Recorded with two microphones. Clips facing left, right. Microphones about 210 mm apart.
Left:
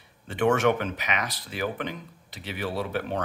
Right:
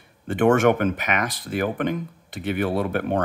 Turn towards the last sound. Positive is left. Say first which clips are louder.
# right 6 dB
turn(degrees=-55)  # may be behind; listen again after turning